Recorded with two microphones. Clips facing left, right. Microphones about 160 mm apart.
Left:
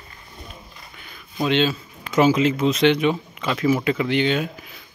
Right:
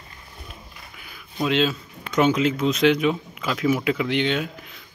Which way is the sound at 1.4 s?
Centre (ahead or behind).